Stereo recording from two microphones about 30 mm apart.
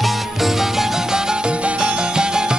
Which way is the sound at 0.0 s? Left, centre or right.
Centre.